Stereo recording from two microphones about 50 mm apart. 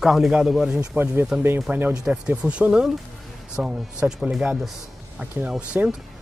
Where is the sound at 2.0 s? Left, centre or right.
Centre.